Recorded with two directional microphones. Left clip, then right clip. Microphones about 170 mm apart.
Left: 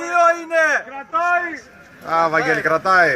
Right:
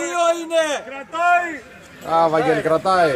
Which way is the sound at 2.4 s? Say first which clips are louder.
Even; 40° right (ahead or behind).